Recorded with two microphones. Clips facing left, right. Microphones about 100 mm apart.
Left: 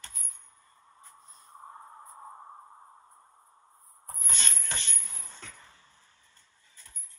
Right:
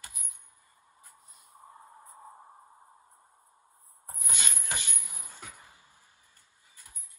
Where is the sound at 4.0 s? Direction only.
10° right (ahead or behind).